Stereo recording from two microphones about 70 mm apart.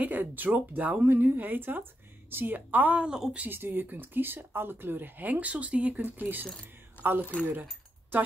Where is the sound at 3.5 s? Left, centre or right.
Right.